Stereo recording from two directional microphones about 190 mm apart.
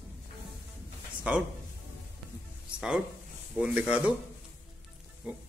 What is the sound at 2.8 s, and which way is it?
Speech, 5° right (ahead or behind).